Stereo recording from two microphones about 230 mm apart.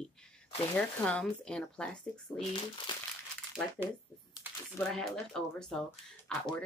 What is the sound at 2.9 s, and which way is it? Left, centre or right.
Speech, centre.